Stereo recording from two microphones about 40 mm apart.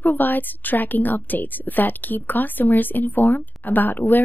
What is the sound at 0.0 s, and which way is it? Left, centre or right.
A woman's voice, left.